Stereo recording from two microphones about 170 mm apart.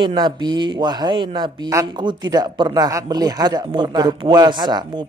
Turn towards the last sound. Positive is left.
turn(degrees=-25)  # may be behind; listen again after turning